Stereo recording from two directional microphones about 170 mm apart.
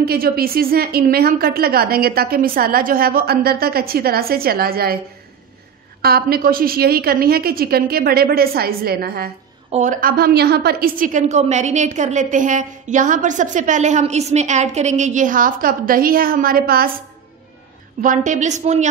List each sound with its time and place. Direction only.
0.0 s a woman's voice: 65° right (ahead or behind)
6.0 s a woman's voice: 65° right (ahead or behind)
9.7 s a woman's voice: 45° right (ahead or behind); by 17.0 s 60° right (ahead or behind)
18.0 s a woman's voice: 50° right (ahead or behind)